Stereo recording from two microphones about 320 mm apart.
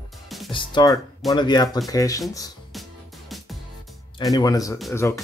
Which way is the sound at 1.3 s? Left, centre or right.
Centre.